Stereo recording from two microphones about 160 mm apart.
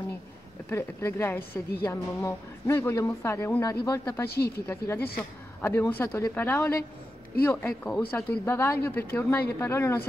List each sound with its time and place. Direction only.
0.7 s speech: 15° left (ahead or behind)